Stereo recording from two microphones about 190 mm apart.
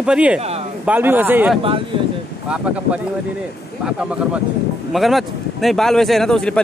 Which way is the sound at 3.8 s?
5° right (ahead or behind).